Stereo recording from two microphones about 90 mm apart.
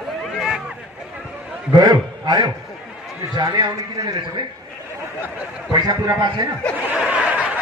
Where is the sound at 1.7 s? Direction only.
55° right (ahead or behind).